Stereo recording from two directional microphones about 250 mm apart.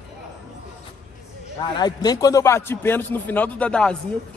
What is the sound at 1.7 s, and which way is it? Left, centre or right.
A man's voice, centre.